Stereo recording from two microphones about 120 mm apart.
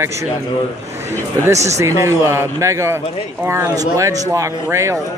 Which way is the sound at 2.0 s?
20° right (ahead or behind).